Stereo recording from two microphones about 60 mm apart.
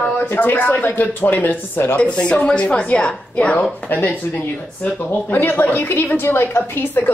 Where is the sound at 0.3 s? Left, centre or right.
Left.